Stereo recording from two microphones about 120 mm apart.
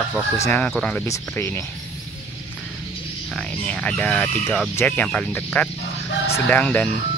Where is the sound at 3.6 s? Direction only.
10° left (ahead or behind).